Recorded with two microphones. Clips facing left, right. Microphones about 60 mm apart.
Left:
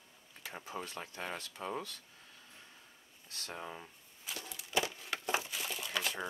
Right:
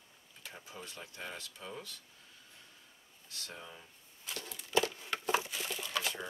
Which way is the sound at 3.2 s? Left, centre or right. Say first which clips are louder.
Left 4 dB; left.